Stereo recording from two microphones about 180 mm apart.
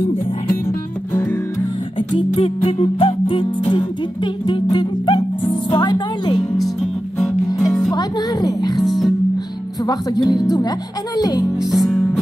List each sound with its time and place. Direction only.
0.7 s music: 10° left (ahead or behind)
2.0 s music: 30° left (ahead or behind)
6.5 s music: centre (ahead or behind)
7.9 s music: 20° left (ahead or behind)
8.8 s music: centre (ahead or behind)
9.8 s speech: 20° left (ahead or behind)
11.7 s music: centre (ahead or behind)